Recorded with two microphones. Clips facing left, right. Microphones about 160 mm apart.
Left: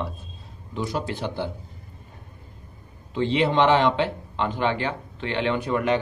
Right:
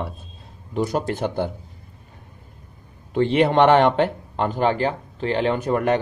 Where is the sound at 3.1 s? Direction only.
55° right (ahead or behind).